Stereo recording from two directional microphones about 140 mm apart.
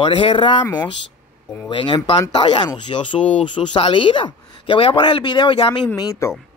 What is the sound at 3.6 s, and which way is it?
Speech, 40° left (ahead or behind).